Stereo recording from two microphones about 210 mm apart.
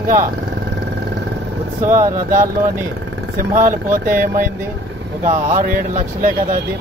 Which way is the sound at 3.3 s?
40° right (ahead or behind).